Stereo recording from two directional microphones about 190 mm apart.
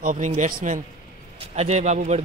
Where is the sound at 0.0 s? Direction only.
40° right (ahead or behind).